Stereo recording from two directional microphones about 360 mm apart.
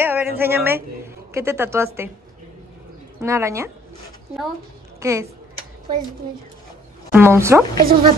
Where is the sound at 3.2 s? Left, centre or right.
Centre.